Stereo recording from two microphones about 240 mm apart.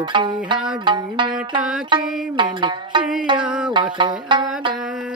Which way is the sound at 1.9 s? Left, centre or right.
Centre.